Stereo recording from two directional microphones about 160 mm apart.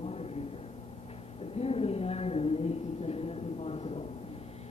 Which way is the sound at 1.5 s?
40° left (ahead or behind).